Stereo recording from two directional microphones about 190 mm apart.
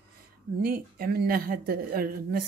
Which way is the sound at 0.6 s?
50° right (ahead or behind).